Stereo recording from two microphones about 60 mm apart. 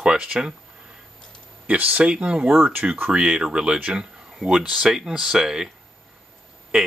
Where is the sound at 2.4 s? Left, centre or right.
Right.